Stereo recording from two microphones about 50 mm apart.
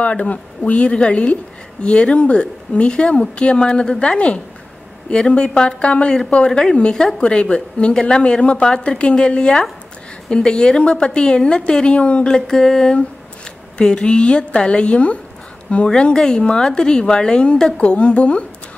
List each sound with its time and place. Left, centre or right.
0.0 s a woman's voice: left